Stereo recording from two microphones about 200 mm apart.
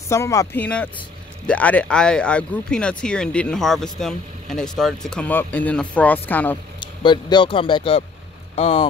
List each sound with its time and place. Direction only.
0.1 s speech: 15° left (ahead or behind)
6.8 s a man's voice: 25° left (ahead or behind)